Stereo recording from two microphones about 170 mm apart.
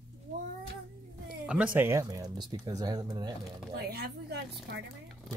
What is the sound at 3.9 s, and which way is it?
Speech, 70° right (ahead or behind).